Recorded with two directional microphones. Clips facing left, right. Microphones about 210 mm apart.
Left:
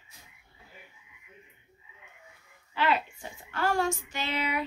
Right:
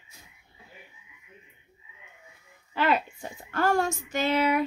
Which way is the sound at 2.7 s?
45° right (ahead or behind).